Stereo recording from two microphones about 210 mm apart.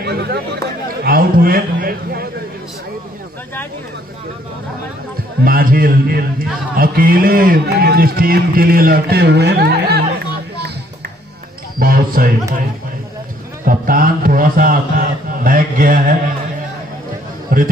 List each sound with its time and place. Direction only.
0.0 s chatter: 50° right (ahead or behind)
1.0 s a man's voice: 45° right (ahead or behind)
5.4 s a man's voice: 45° right (ahead or behind)
11.8 s a man's voice: 45° right (ahead or behind)
13.7 s a man's voice: 40° right (ahead or behind)
17.5 s a sound: 45° right (ahead or behind)